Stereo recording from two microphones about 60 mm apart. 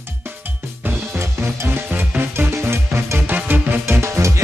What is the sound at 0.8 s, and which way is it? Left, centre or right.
Music, right.